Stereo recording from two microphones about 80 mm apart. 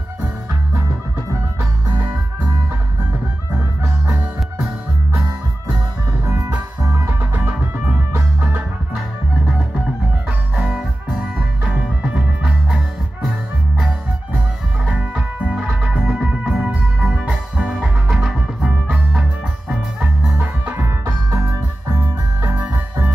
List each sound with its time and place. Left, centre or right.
4.1 s music: centre
6.2 s music: right
10.5 s music: centre
12.6 s music: centre
18.6 s music: centre
19.7 s music: centre
20.3 s music: right